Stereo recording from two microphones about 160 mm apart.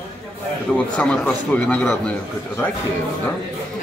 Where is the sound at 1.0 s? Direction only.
10° left (ahead or behind).